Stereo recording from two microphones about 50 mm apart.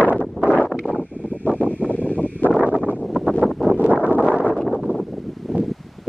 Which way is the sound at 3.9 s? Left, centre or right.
Right.